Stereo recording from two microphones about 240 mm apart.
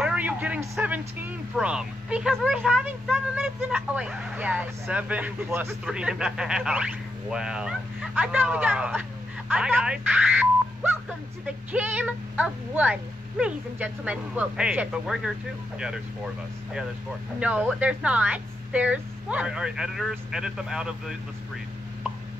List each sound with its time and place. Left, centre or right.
0.0 s a sound: centre
1.6 s a woman's voice: centre
17.4 s a woman's voice: centre